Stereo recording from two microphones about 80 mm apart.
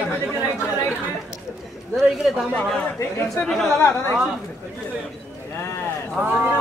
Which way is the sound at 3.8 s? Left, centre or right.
Left.